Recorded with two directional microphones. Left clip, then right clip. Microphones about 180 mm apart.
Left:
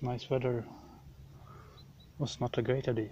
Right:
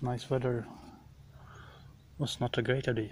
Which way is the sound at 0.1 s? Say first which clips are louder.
Even; 20° right (ahead or behind).